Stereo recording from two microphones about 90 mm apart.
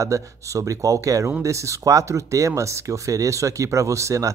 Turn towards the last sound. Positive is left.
turn(degrees=-35)  # may be behind; listen again after turning